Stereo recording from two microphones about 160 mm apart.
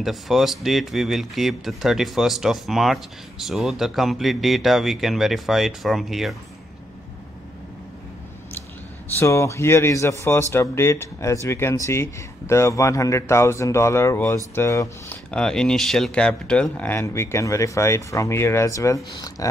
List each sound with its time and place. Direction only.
0.0 s speech: centre (ahead or behind)
9.2 s speech: 15° left (ahead or behind)
15.3 s speech: 5° left (ahead or behind); by 19.5 s 20° left (ahead or behind)